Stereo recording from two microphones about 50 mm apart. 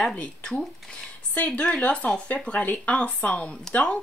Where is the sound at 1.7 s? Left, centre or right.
Left.